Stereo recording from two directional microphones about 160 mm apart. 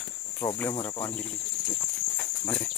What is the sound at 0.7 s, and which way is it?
Cricket, 25° left (ahead or behind).